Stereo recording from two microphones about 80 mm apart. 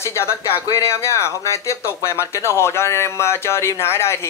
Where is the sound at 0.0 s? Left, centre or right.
Left.